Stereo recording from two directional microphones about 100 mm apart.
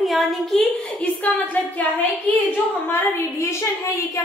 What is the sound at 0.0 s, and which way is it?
Speech, centre (ahead or behind).